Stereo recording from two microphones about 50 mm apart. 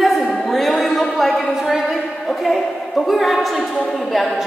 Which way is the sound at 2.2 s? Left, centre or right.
Centre.